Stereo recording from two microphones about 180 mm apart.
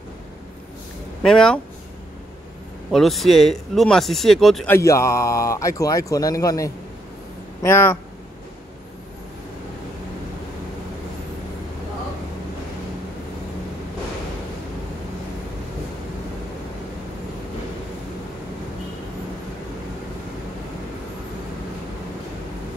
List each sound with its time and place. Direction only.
1.2 s speech: 5° left (ahead or behind)
2.9 s speech: centre (ahead or behind)
4.6 s speech: 15° left (ahead or behind)